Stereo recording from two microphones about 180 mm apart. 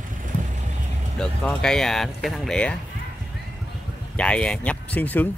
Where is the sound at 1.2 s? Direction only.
5° left (ahead or behind).